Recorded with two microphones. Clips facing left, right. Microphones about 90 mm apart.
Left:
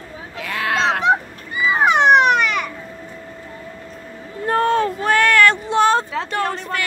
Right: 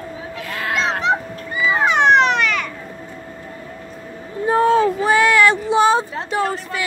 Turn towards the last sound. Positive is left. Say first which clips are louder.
# right 1 dB
turn(degrees=-10)  # may be behind; listen again after turning